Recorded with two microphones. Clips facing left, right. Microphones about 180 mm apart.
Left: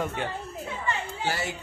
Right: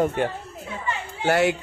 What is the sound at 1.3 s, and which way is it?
Speech, 70° right (ahead or behind).